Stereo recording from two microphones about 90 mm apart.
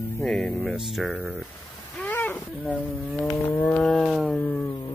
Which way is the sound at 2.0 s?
20° left (ahead or behind).